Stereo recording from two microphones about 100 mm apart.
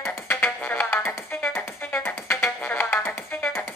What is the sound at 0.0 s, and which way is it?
Music, 20° left (ahead or behind).